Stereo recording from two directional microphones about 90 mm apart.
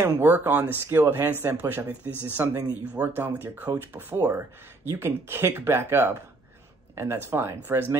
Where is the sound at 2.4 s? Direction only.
25° right (ahead or behind).